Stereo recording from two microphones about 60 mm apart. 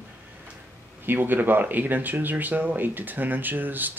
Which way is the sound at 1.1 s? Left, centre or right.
Right.